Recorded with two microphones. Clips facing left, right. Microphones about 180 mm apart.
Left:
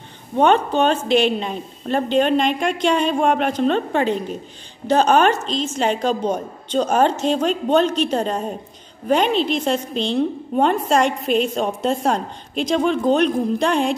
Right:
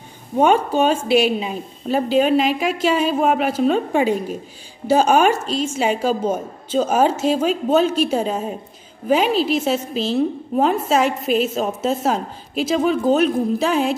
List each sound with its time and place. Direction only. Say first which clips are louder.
0.4 s a woman's voice: even; 10° right (ahead or behind)